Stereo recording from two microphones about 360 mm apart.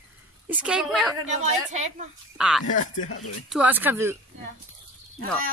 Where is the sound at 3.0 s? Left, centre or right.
Left.